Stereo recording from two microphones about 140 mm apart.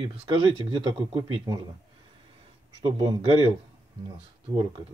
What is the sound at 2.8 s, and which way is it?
Speech, 30° right (ahead or behind).